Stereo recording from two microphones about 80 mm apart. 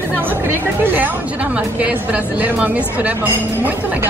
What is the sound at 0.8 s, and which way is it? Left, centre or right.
A woman's voice, right.